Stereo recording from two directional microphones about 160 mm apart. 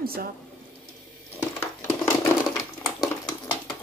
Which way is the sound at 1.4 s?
15° left (ahead or behind).